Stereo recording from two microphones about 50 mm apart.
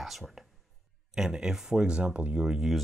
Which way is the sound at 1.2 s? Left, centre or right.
Centre.